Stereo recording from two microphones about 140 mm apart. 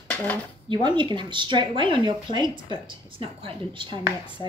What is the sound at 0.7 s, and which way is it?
A woman's voice, 35° right (ahead or behind).